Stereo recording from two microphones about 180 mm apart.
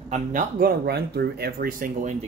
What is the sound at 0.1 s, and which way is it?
Speech, 45° right (ahead or behind).